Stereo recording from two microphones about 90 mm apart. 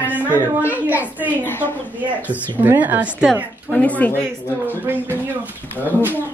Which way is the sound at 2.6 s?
20° right (ahead or behind).